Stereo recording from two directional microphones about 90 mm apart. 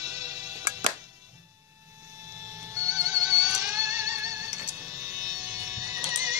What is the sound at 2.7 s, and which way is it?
Music, 40° right (ahead or behind).